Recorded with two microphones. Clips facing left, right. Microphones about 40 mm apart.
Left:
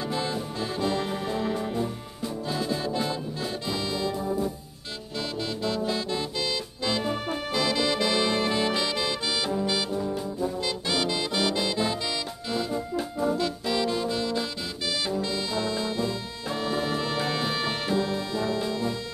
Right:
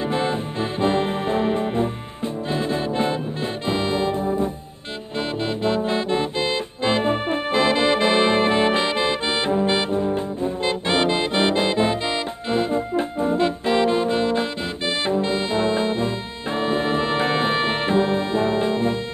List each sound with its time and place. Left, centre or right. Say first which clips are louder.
0.0 s music: right 7 dB; right